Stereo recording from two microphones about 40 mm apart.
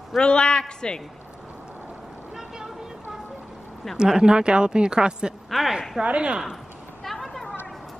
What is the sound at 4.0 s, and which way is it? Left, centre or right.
A woman's voice, centre.